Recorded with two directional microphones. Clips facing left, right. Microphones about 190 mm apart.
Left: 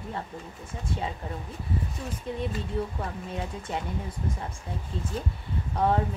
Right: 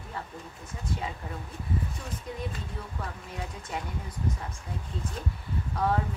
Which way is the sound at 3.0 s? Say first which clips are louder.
Left 4 dB; 25° left (ahead or behind).